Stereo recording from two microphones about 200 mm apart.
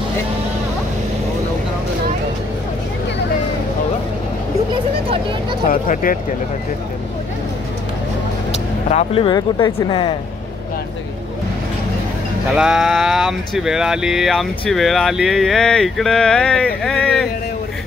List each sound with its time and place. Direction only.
5.0 s speech: 30° right (ahead or behind)
5.7 s speech: 45° left (ahead or behind)
8.8 s speech: 30° left (ahead or behind)
12.5 s speech: centre (ahead or behind)